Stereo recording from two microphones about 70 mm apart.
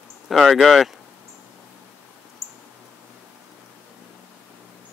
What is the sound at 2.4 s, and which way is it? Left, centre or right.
Mouse, centre.